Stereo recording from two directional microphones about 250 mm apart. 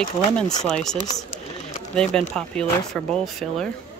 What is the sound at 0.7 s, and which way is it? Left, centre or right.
Speech, centre.